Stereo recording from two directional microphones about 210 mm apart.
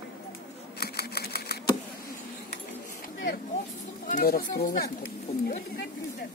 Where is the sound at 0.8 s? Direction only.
50° left (ahead or behind).